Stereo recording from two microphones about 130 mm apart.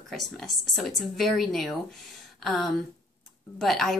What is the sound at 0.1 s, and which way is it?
A woman's voice, centre (ahead or behind).